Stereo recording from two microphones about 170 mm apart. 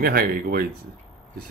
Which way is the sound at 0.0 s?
65° right (ahead or behind).